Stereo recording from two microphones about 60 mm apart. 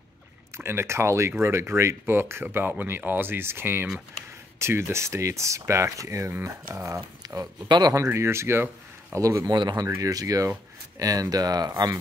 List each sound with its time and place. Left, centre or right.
0.6 s speech: right
7.2 s speech: right
8.1 s speech: right
11.0 s speech: right